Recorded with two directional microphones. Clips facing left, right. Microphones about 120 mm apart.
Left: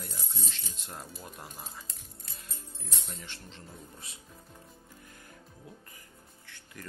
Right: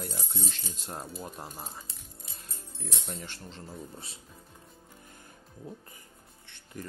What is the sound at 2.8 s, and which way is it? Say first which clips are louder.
Speech: right 6 dB; 70° right (ahead or behind).